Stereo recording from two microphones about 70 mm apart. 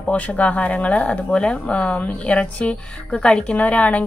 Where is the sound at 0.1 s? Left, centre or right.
Left.